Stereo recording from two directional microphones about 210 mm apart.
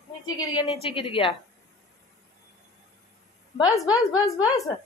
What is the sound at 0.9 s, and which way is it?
Speech, 25° left (ahead or behind).